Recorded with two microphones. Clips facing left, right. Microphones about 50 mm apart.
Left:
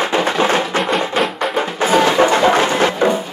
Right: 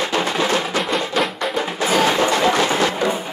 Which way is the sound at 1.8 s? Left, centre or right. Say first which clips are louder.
Left 5 dB; left.